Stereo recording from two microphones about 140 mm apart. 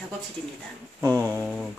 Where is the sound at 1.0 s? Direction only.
15° right (ahead or behind).